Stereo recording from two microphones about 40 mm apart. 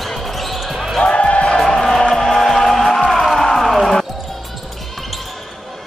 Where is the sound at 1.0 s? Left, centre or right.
Left.